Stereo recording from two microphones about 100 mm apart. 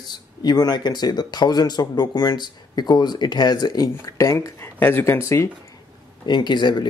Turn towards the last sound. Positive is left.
turn(degrees=50)  # may be behind; listen again after turning